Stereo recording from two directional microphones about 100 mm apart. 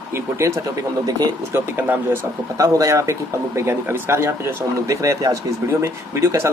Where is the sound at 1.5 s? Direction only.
20° right (ahead or behind).